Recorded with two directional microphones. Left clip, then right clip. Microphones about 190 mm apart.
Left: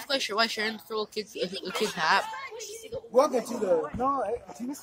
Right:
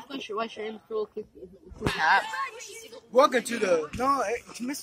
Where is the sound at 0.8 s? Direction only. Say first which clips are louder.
Right 1 dB; 50° left (ahead or behind).